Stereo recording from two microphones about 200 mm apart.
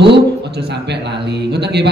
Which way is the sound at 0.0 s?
55° right (ahead or behind).